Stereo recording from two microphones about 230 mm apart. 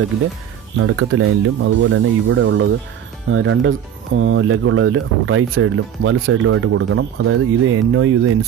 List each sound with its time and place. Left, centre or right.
0.7 s speech: right